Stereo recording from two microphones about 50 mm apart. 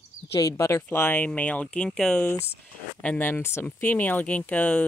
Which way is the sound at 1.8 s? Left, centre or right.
Centre.